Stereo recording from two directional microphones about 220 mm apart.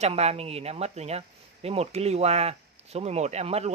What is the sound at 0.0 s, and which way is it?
Speech, 30° right (ahead or behind).